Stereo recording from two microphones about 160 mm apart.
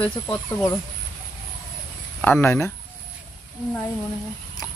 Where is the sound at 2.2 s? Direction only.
10° left (ahead or behind).